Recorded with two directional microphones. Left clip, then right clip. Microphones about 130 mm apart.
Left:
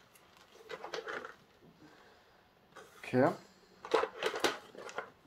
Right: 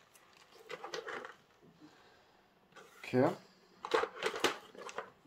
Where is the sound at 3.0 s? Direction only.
15° left (ahead or behind).